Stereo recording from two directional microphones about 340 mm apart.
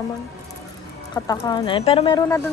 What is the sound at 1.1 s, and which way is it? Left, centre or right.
Speech, centre.